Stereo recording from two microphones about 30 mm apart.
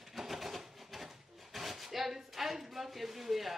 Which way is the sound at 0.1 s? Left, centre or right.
Centre.